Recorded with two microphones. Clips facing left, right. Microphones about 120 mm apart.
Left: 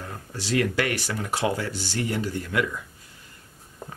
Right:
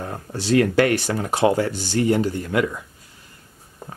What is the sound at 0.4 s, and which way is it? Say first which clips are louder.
Speech: right 7 dB; 30° right (ahead or behind).